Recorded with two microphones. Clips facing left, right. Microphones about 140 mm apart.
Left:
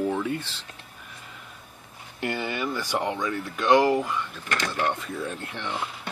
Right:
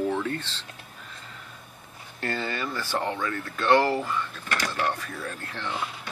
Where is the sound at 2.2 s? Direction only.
15° left (ahead or behind).